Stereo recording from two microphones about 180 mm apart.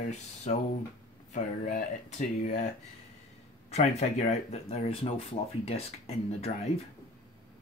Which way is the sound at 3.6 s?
35° left (ahead or behind).